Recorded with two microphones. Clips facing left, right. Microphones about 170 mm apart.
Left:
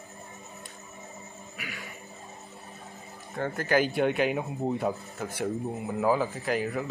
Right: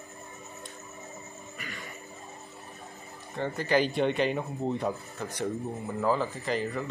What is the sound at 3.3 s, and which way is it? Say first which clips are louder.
Speech: left 1 dB; 5° left (ahead or behind).